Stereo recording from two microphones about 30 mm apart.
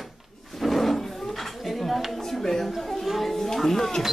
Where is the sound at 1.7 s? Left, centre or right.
Centre.